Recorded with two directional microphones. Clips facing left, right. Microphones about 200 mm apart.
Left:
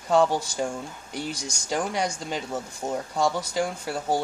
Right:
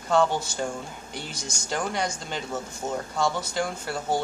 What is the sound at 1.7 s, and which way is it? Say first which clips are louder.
Speech: left 2 dB; 10° left (ahead or behind).